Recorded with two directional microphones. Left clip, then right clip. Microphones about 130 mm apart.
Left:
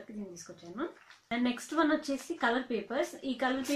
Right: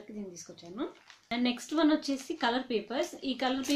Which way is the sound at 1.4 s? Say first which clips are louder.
Right 2 dB; 10° right (ahead or behind).